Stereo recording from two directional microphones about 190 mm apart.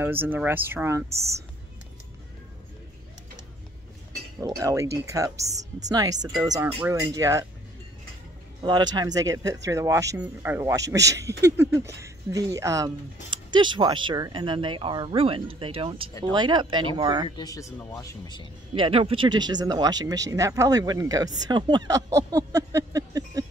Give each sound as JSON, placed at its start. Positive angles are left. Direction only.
{"t": 0.0, "sound": "speech", "side_deg": -10}
{"t": 4.4, "sound": "speech", "side_deg": -20}
{"t": 5.5, "sound": "a woman's voice", "side_deg": -35}
{"t": 5.9, "sound": "speech", "side_deg": -20}
{"t": 8.6, "sound": "speech", "side_deg": -20}
{"t": 17.4, "sound": "speech", "side_deg": 20}
{"t": 18.8, "sound": "speech", "side_deg": -30}